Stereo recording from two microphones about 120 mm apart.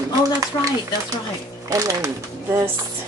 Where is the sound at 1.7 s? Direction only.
30° right (ahead or behind).